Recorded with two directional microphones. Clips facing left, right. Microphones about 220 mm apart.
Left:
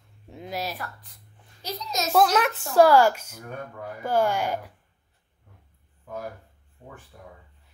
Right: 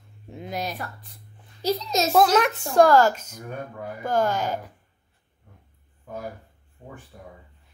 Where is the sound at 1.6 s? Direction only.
25° right (ahead or behind).